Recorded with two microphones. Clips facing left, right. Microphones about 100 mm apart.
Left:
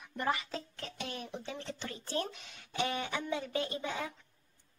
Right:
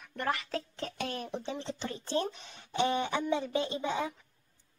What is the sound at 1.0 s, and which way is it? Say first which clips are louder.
Speech: right 4 dB; 45° right (ahead or behind).